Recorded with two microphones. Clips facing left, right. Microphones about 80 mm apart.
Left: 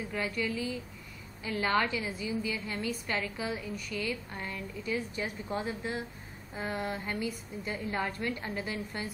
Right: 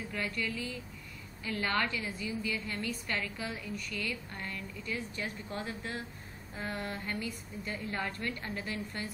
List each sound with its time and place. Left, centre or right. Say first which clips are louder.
0.1 s a woman's voice: left 3 dB; centre